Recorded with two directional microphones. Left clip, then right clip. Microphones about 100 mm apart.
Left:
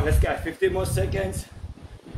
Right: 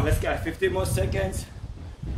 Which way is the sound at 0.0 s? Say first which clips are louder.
Left 1 dB; 20° right (ahead or behind).